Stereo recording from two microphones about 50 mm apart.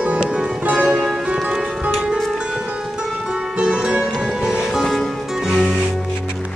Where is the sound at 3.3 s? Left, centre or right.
Centre.